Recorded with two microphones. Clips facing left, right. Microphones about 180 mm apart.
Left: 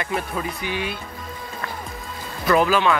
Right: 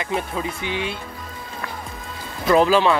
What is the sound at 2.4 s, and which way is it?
Speech, 25° right (ahead or behind).